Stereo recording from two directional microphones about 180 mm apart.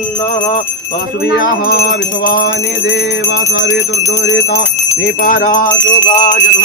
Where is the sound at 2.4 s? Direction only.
85° left.